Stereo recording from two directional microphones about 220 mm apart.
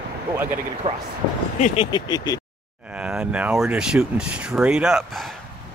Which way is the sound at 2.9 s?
5° right (ahead or behind).